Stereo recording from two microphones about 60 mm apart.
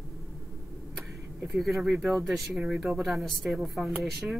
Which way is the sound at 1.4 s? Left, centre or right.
Centre.